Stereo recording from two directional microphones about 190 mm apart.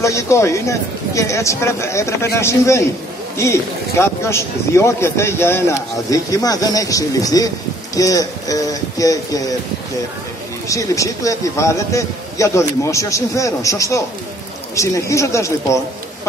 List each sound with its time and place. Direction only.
0.0 s speech: 15° left (ahead or behind)
10.7 s speech: 15° left (ahead or behind)